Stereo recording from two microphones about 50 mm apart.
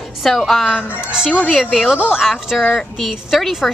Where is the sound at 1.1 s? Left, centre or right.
Centre.